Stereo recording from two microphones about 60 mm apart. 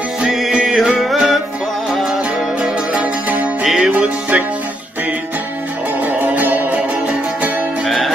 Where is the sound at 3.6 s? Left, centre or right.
Centre.